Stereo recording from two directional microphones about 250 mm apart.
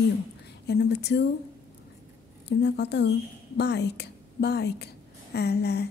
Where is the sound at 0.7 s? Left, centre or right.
Left.